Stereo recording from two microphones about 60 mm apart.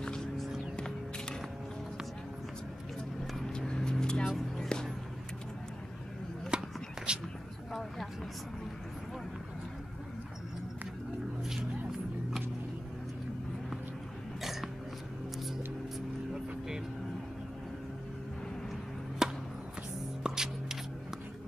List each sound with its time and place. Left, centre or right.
0.0 s music: centre
3.3 s vehicle: centre
4.6 s music: centre
6.5 s a sound: centre
11.4 s music: centre
14.4 s hiccup: centre
19.2 s chop: centre
20.2 s music: centre